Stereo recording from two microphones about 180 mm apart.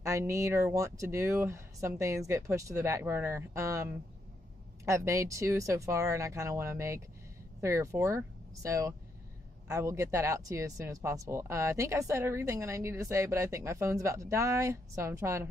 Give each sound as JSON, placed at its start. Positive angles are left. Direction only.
{"t": 0.0, "sound": "speech", "side_deg": -15}